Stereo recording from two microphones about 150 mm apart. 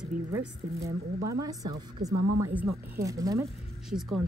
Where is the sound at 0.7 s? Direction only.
20° right (ahead or behind).